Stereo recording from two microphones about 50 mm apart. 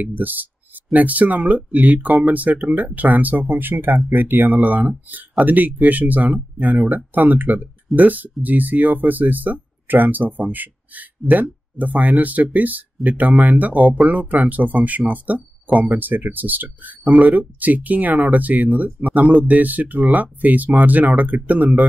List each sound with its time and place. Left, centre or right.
0.0 s speech: right